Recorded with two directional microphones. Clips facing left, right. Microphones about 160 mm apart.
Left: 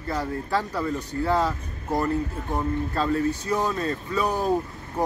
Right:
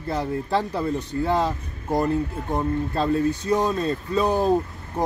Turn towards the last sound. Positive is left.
turn(degrees=-20)  # may be behind; listen again after turning